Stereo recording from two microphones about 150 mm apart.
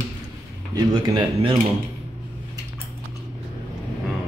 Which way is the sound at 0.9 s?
30° right (ahead or behind).